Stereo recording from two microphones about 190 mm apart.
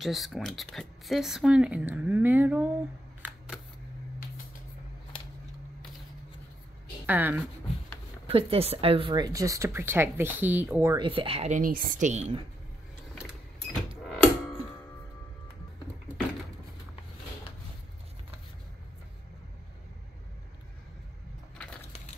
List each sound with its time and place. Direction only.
0.0 s speech: centre (ahead or behind)
7.1 s speech: 10° right (ahead or behind)
8.3 s speech: 30° right (ahead or behind); by 11.1 s 15° right (ahead or behind)
11.1 s a woman's voice: 30° right (ahead or behind)
14.1 s a sound: 5° left (ahead or behind)